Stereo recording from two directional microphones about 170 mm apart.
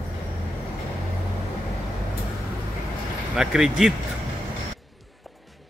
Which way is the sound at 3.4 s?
5° right (ahead or behind).